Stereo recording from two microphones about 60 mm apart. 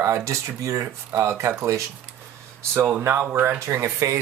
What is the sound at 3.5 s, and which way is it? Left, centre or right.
Speech, right.